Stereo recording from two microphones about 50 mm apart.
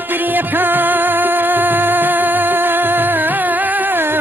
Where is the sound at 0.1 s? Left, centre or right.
Right.